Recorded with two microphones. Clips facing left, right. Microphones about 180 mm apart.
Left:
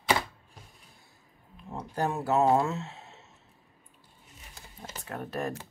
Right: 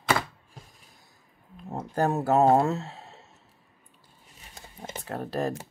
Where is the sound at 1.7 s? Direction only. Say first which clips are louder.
Right 5 dB; 45° right (ahead or behind).